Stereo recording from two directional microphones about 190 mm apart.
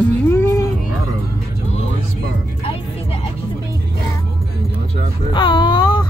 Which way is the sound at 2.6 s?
30° left (ahead or behind).